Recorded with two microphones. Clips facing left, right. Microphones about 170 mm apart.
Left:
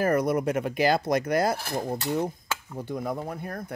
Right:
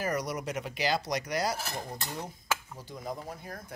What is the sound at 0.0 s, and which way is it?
Speech, 55° left (ahead or behind).